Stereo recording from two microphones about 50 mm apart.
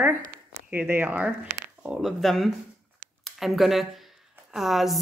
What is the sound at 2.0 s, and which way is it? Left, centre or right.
Speech, centre.